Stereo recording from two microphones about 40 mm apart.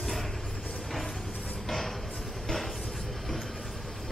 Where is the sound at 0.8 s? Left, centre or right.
Centre.